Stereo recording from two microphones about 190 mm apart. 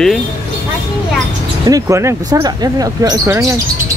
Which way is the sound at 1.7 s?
15° right (ahead or behind).